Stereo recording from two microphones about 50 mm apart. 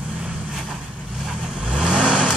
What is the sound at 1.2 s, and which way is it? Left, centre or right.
Vehicle, centre.